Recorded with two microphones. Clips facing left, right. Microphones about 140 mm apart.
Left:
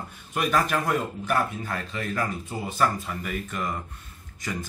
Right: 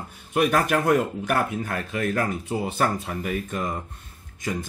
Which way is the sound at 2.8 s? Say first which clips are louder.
Left 3 dB; 50° right (ahead or behind).